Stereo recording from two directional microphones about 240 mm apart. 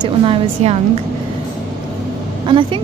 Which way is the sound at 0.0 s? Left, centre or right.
Right.